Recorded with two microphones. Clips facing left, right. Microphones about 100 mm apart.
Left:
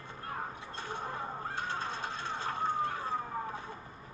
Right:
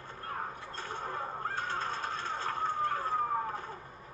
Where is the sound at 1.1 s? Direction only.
50° right (ahead or behind).